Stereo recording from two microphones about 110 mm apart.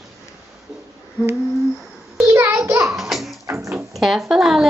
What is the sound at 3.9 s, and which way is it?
Speech, centre (ahead or behind).